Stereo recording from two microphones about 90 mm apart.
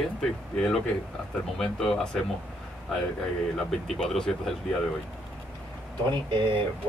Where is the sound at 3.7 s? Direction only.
5° left (ahead or behind).